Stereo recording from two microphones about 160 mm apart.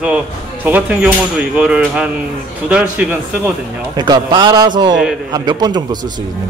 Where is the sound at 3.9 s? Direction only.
25° right (ahead or behind).